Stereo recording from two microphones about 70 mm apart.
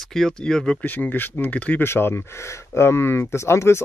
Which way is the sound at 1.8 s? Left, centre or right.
Left.